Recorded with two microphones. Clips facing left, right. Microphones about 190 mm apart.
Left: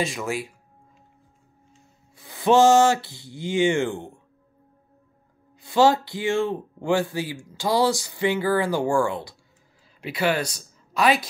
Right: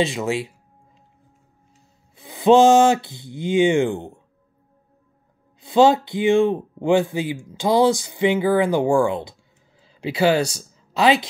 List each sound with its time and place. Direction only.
0.0 s speech: 25° right (ahead or behind)
2.1 s speech: 20° right (ahead or behind)
5.6 s a woman's voice: 20° right (ahead or behind)